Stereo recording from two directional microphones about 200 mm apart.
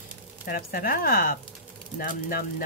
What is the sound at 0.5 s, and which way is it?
Speech, 45° left (ahead or behind).